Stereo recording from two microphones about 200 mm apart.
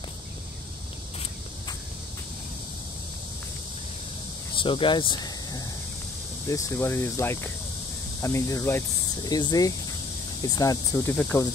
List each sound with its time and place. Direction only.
4.6 s speech: 25° left (ahead or behind)